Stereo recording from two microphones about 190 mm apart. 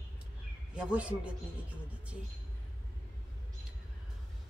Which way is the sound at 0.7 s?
5° right (ahead or behind).